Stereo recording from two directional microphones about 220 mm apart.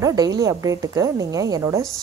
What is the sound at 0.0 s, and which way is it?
A woman's voice, 15° right (ahead or behind).